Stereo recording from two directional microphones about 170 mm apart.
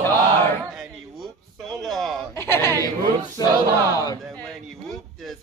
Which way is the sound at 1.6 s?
Centre (ahead or behind).